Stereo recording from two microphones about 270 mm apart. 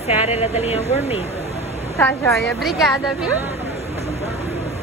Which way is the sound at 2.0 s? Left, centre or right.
Centre.